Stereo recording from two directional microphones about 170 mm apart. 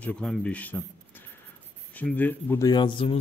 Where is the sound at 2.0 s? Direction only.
10° left (ahead or behind).